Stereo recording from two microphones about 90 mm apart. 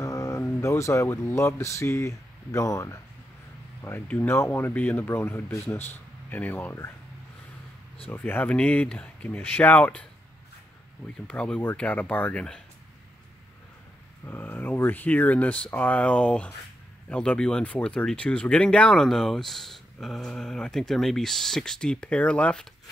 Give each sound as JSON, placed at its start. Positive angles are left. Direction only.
{"t": 0.0, "sound": "guitar", "side_deg": 35}
{"t": 0.6, "sound": "speech", "side_deg": 35}
{"t": 4.1, "sound": "speech", "side_deg": 25}
{"t": 8.1, "sound": "speech", "side_deg": 20}
{"t": 11.2, "sound": "speech", "side_deg": 10}
{"t": 14.2, "sound": "speech", "side_deg": 25}